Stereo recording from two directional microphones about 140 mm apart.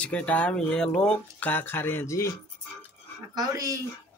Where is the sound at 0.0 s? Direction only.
10° left (ahead or behind).